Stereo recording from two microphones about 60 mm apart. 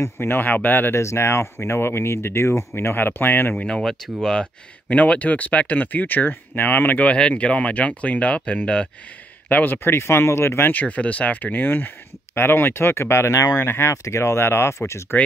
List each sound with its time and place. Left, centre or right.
0.2 s speech: left
0.9 s speech: left
3.5 s speech: centre
9.5 s speech: left
10.7 s speech: left
13.5 s speech: left